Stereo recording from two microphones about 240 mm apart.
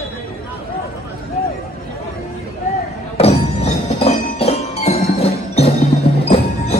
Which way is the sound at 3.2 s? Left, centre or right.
Left.